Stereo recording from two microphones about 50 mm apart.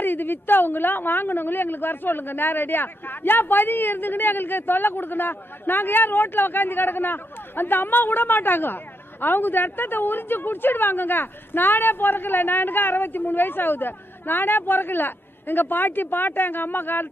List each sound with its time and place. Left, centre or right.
0.0 s a woman's voice: left